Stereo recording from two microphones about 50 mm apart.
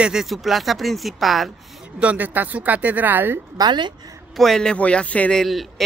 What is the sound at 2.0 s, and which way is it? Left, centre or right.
Speech, right.